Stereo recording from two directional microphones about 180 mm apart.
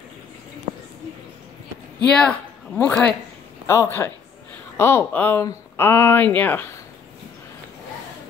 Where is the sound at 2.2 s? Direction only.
5° left (ahead or behind).